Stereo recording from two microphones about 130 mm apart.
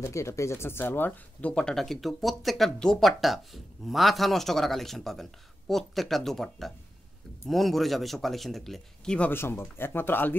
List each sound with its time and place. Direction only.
0.0 s speech: 20° left (ahead or behind); by 9.3 s 5° left (ahead or behind)
9.3 s speech: 20° left (ahead or behind)